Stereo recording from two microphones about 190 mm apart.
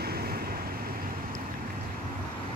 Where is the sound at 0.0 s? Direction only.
55° right (ahead or behind).